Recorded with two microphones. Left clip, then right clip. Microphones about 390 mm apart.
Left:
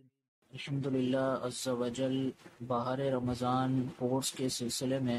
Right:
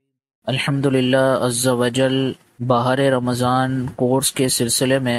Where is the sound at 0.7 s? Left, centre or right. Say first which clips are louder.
Right 14 dB; centre.